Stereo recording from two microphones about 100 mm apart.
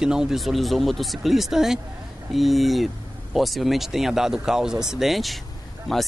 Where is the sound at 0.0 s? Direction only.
5° right (ahead or behind).